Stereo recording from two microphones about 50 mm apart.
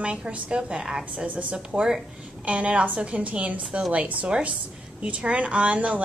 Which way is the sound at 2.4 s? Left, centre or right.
Right.